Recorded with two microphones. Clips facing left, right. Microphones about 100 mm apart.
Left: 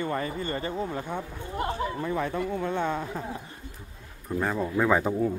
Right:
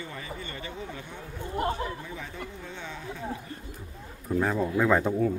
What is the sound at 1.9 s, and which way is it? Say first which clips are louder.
Speech: left 10 dB; 60° left (ahead or behind).